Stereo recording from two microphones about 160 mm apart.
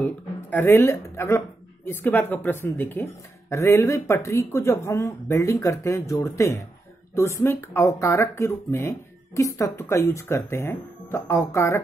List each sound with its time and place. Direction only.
0.0 s speech: 10° left (ahead or behind)